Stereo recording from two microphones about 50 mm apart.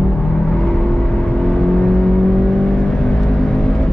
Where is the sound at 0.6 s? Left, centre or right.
Centre.